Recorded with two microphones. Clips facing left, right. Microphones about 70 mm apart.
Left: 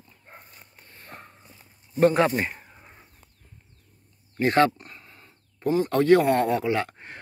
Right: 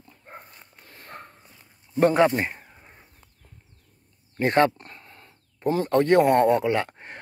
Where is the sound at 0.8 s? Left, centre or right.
Right.